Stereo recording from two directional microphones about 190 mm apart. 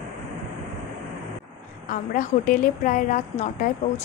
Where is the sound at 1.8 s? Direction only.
45° left (ahead or behind).